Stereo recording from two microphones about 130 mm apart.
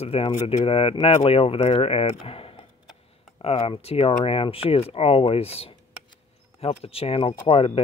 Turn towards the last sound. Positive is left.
turn(degrees=45)  # may be behind; listen again after turning